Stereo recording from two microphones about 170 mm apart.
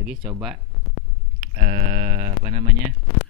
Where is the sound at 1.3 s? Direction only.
50° right (ahead or behind).